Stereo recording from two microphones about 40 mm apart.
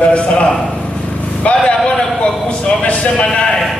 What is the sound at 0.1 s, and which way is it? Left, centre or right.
A man's voice, left.